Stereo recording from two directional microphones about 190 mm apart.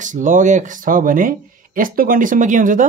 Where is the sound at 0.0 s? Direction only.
40° right (ahead or behind).